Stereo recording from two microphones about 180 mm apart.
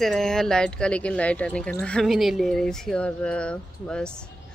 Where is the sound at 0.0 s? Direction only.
Centre (ahead or behind).